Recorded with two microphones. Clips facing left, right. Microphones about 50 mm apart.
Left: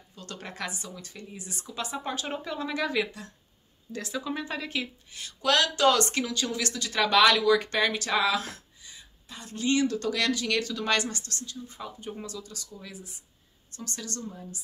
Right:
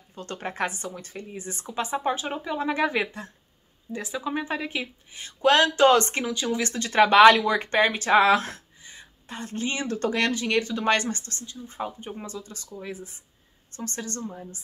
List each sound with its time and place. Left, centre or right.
0.1 s speech: right
2.2 s speech: centre
2.6 s speech: right
3.9 s speech: centre
6.7 s speech: right
8.2 s a sound: right
9.7 s speech: right